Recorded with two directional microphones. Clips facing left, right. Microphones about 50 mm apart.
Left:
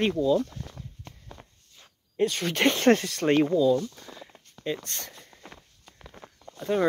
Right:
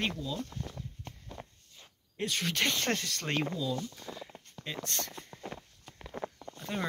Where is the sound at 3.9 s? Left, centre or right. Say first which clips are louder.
Right 1 dB; centre.